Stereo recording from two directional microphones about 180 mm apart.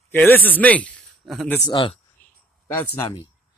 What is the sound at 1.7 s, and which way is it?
Speech, 30° left (ahead or behind).